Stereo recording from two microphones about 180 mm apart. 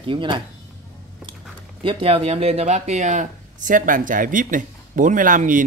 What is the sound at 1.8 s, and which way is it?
Speech, 30° right (ahead or behind).